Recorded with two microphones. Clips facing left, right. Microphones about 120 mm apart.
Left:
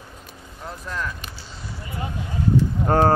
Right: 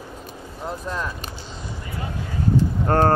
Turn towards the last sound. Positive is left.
turn(degrees=5)  # may be behind; listen again after turning